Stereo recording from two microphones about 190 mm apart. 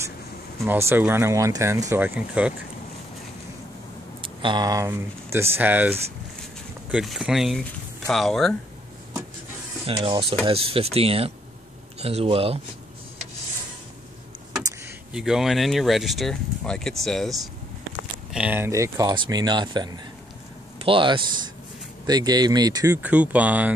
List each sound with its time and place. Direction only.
0.7 s speech: 10° right (ahead or behind)
4.2 s speech: 25° right (ahead or behind); by 8.5 s centre (ahead or behind)
9.8 s speech: 25° right (ahead or behind)
15.1 s speech: centre (ahead or behind); by 22.9 s 20° right (ahead or behind)
23.0 s speech: 5° right (ahead or behind)